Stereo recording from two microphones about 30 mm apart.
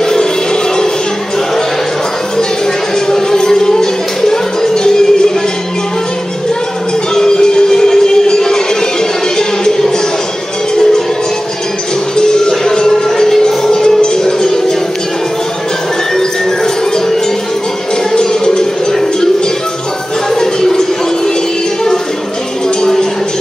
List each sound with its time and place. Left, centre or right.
0.0 s music: left
3.1 s music: left
7.2 s music: left
12.2 s music: left
18.2 s music: centre
20.3 s music: centre